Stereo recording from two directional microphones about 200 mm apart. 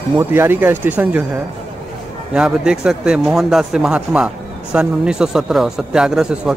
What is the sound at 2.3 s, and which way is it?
Speech, 5° right (ahead or behind).